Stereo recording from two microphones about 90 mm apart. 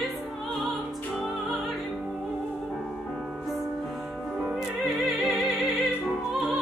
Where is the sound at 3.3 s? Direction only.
Centre (ahead or behind).